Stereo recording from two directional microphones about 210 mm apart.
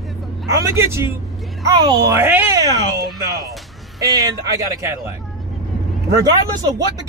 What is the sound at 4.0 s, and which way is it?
Speech, 15° right (ahead or behind).